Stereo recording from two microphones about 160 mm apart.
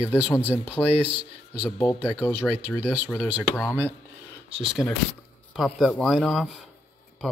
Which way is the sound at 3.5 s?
10° left (ahead or behind).